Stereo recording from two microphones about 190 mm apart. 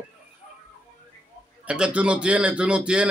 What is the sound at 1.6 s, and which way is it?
A man's voice, 5° right (ahead or behind).